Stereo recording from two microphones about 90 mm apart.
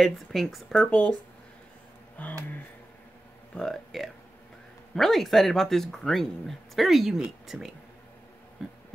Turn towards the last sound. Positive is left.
turn(degrees=-5)  # may be behind; listen again after turning